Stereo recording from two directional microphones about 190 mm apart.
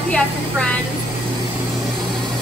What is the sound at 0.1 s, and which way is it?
Speech, 5° left (ahead or behind).